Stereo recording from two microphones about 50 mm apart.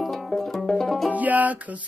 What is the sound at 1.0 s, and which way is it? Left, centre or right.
Music, right.